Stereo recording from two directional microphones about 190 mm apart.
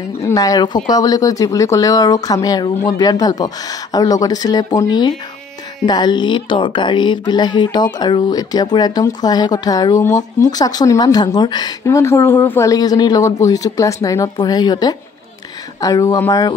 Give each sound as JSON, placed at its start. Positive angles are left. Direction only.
{"t": 0.2, "sound": "a woman's voice", "side_deg": 20}
{"t": 5.9, "sound": "a woman's voice", "side_deg": 20}